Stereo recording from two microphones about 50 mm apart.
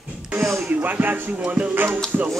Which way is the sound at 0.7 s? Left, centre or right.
Right.